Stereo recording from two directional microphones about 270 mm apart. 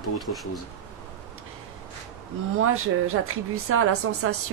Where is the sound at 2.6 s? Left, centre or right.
Right.